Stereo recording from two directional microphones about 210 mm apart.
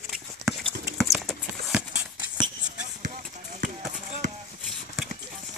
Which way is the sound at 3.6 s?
40° right (ahead or behind).